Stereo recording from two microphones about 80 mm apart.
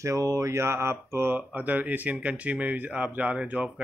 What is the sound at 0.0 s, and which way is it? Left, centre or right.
Speech, right.